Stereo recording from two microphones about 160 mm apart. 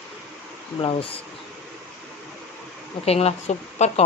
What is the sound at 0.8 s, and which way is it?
Speech, 35° left (ahead or behind).